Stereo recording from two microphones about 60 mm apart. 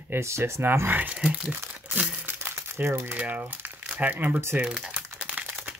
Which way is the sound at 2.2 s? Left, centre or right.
Right.